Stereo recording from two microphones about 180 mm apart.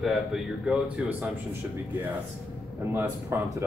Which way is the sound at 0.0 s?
Centre (ahead or behind).